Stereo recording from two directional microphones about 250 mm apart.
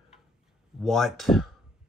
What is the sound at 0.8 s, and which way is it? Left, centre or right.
Speech, centre.